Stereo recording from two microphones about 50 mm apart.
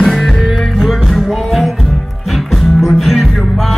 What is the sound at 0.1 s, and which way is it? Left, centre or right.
Music, centre.